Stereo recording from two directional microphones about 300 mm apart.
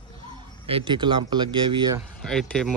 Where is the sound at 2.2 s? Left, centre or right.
Centre.